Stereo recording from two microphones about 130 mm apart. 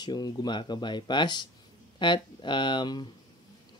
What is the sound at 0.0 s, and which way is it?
Speech, 35° left (ahead or behind).